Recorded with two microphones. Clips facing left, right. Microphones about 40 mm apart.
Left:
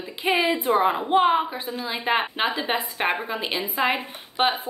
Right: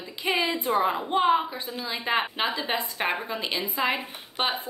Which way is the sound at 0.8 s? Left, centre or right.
Centre.